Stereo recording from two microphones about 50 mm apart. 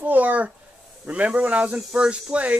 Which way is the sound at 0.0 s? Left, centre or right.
Right.